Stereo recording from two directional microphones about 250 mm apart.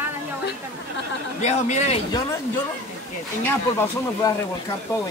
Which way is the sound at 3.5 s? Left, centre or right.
Centre.